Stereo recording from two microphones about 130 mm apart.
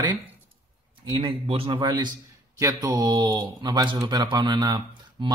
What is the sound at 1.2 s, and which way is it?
Speech, 45° right (ahead or behind).